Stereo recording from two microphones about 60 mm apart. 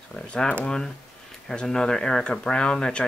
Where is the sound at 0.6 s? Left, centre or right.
Centre.